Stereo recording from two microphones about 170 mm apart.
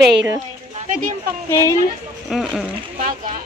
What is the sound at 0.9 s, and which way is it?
Speech, 50° right (ahead or behind).